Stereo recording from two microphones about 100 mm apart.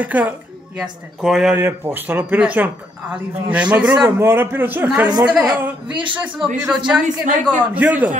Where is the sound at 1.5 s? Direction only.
25° right (ahead or behind).